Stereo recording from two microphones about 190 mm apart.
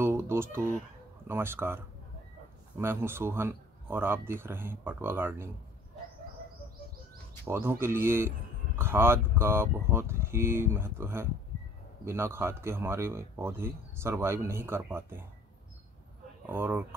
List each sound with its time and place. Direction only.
0.0 s speech: 15° right (ahead or behind)
7.4 s speech: 15° right (ahead or behind)
16.4 s speech: 10° right (ahead or behind)